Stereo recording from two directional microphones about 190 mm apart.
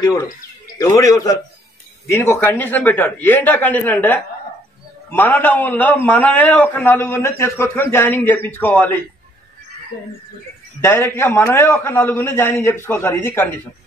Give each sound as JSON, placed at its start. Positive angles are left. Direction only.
{"t": 0.7, "sound": "a man's voice", "side_deg": 20}
{"t": 10.8, "sound": "a man's voice", "side_deg": 15}